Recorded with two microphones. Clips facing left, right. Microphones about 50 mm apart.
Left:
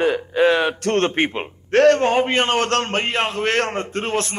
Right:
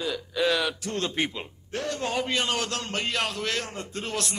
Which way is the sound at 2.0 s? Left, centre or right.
Left.